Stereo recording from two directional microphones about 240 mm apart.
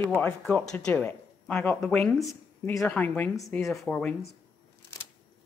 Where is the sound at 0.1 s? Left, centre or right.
Centre.